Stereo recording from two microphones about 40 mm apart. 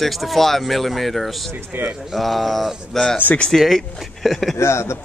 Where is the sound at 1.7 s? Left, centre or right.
Right.